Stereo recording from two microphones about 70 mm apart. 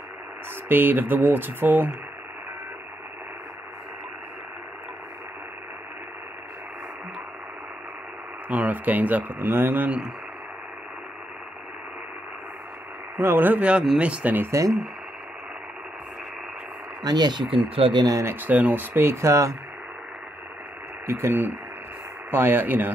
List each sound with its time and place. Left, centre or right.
0.7 s speech: right
8.5 s speech: right
9.8 s speech: centre
13.2 s speech: right
13.9 s speech: centre
14.5 s speech: right
17.0 s speech: right
17.9 s speech: right
18.2 s speech: right
19.2 s speech: right
21.1 s speech: right